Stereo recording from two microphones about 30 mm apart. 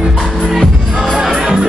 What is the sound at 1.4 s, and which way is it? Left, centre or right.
Music, right.